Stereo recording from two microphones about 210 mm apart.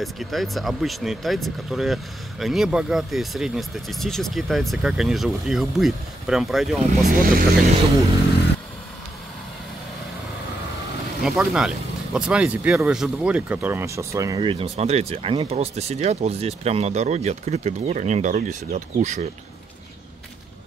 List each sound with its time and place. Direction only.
0.0 s speech: centre (ahead or behind)
7.1 s speech: 40° right (ahead or behind)
11.2 s speech: centre (ahead or behind); by 19.2 s 35° right (ahead or behind)